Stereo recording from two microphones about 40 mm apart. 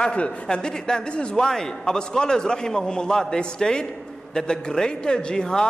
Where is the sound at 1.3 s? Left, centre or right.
Centre.